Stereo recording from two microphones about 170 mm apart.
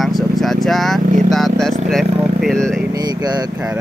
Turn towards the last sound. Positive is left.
turn(degrees=-25)  # may be behind; listen again after turning